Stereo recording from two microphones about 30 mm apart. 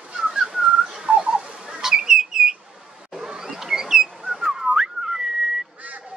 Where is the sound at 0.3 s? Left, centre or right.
Centre.